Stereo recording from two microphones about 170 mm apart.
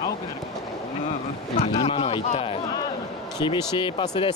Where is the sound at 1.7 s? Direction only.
30° left (ahead or behind).